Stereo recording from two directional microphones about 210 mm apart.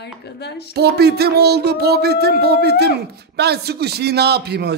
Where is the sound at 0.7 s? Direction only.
50° right (ahead or behind).